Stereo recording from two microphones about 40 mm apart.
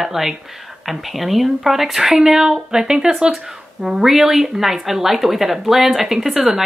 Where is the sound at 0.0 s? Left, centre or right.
Centre.